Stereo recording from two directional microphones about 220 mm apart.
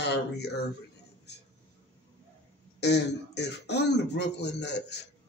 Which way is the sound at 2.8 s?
50° left (ahead or behind).